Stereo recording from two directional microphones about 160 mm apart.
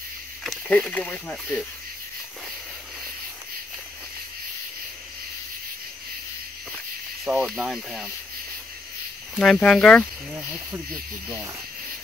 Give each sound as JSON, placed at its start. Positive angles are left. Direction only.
{"t": 0.4, "sound": "speech", "side_deg": 5}
{"t": 7.2, "sound": "speech", "side_deg": -5}
{"t": 9.4, "sound": "speech", "side_deg": 5}